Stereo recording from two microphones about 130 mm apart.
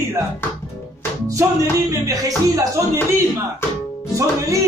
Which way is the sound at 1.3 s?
25° right (ahead or behind).